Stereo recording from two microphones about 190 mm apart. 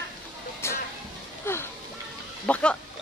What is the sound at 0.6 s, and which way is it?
Vehicle, 15° left (ahead or behind).